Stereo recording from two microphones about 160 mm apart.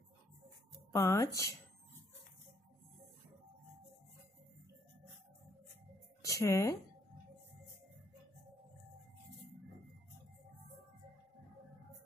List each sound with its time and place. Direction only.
0.9 s speech: 20° left (ahead or behind)
6.2 s speech: 20° left (ahead or behind)